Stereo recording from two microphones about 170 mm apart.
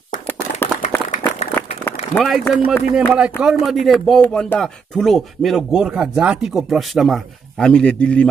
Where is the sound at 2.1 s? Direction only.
Centre (ahead or behind).